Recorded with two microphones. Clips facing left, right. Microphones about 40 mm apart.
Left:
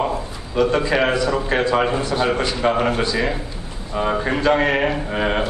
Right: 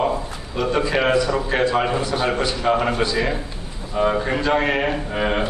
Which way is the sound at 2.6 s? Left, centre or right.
Centre.